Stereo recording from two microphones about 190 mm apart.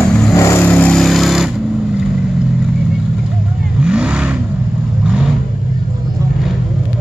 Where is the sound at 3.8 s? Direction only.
5° right (ahead or behind).